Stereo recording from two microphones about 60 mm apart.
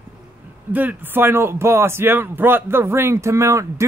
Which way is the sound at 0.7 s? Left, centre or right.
Right.